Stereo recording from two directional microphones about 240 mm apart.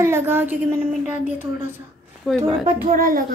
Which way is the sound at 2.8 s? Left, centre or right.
Right.